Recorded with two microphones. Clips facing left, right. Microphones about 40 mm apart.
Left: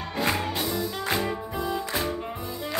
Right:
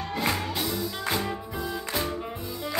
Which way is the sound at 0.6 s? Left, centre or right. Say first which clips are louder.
Left 2 dB; centre.